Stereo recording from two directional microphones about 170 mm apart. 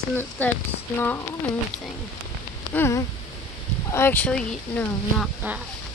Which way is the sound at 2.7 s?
15° left (ahead or behind).